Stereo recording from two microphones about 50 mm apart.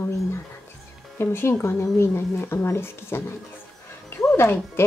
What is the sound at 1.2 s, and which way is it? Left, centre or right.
Speech, left.